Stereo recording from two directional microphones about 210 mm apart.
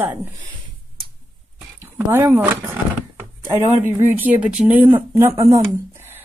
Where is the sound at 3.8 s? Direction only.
10° right (ahead or behind).